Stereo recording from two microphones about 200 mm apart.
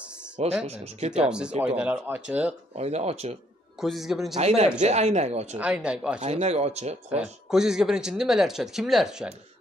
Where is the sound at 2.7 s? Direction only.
30° right (ahead or behind).